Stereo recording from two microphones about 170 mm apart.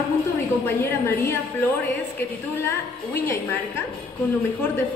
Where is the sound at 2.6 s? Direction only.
15° left (ahead or behind).